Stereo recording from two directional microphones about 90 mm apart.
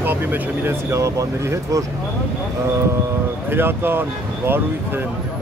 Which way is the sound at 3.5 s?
25° right (ahead or behind).